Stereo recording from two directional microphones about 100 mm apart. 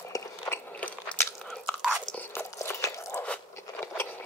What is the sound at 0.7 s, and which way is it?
Biting, 15° left (ahead or behind).